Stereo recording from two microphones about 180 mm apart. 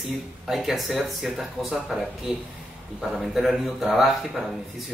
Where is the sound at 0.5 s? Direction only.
Centre (ahead or behind).